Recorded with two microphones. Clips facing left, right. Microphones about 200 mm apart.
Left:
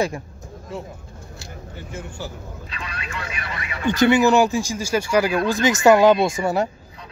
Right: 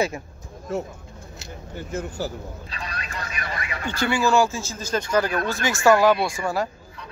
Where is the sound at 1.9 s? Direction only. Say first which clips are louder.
Right 5 dB; 40° right (ahead or behind).